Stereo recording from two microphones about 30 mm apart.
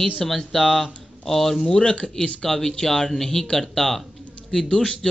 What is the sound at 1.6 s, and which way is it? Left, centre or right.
A man's voice, left.